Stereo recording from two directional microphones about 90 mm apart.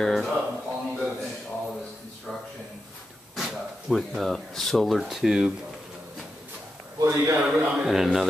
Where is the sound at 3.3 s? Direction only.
Centre (ahead or behind).